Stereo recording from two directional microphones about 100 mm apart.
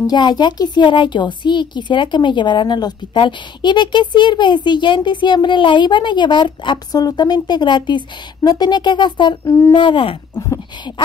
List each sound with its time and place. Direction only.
0.0 s a woman's voice: 45° left (ahead or behind)
9.4 s speech: 30° left (ahead or behind)
9.7 s speech: 55° left (ahead or behind)